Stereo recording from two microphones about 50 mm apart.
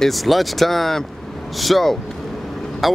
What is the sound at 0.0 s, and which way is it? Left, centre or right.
Speech, centre.